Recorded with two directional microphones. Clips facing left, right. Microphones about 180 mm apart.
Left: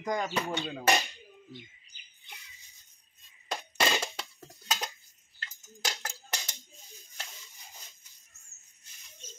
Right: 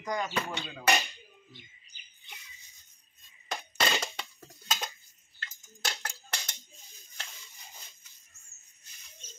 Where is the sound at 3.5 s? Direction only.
Centre (ahead or behind).